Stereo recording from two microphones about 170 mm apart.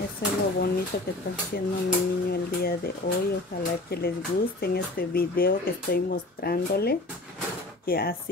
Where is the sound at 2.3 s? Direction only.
65° left (ahead or behind).